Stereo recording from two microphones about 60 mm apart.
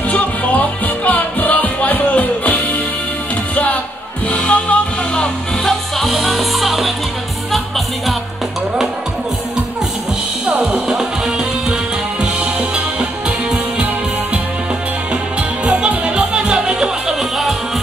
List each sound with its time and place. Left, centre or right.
0.1 s music: left
4.3 s music: centre
10.6 s music: centre
15.6 s music: right